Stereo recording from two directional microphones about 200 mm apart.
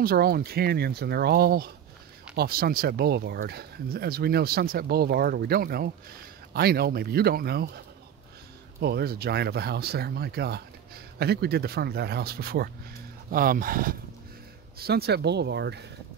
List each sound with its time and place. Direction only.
0.0 s speech: 50° right (ahead or behind)
8.8 s speech: 50° right (ahead or behind)